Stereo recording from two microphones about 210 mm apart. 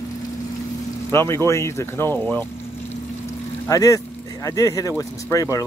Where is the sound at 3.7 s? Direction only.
15° left (ahead or behind).